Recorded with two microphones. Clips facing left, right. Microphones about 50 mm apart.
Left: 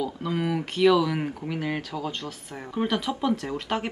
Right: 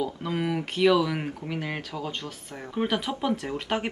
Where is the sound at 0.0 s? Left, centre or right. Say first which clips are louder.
Left 1 dB; centre.